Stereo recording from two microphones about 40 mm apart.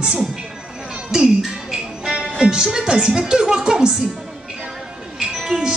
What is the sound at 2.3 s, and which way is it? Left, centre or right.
Speech, centre.